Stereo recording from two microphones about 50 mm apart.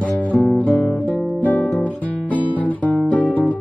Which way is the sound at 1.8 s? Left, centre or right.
Left.